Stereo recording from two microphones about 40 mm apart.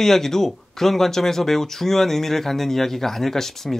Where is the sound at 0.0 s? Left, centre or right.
Centre.